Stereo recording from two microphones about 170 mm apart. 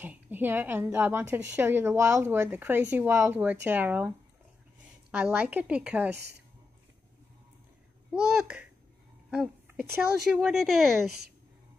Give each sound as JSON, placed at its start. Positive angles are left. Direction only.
{"t": 0.0, "sound": "a woman's voice", "side_deg": -10}
{"t": 5.1, "sound": "a woman's voice", "side_deg": -5}
{"t": 8.1, "sound": "speech", "side_deg": -5}
{"t": 9.3, "sound": "a sound", "side_deg": -5}
{"t": 10.3, "sound": "speech", "side_deg": 0}